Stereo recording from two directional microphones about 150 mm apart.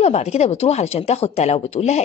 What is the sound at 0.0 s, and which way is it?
Speech, 45° left (ahead or behind).